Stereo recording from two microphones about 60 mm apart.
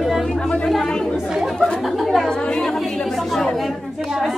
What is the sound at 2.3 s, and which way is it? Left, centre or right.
A woman's voice, centre.